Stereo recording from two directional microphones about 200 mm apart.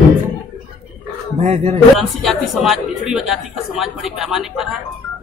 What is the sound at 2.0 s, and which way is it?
Speech, centre (ahead or behind).